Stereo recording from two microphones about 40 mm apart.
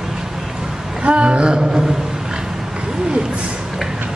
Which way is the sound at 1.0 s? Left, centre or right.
Right.